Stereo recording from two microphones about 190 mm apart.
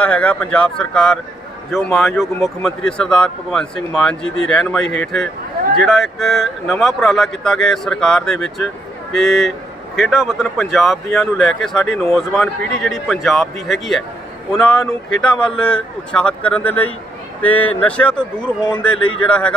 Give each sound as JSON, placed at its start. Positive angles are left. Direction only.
{"t": 0.0, "sound": "speech", "side_deg": 5}
{"t": 18.9, "sound": "speech", "side_deg": 90}
{"t": 19.2, "sound": "speech", "side_deg": 5}